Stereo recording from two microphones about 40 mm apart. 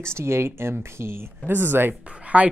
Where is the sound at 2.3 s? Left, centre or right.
Right.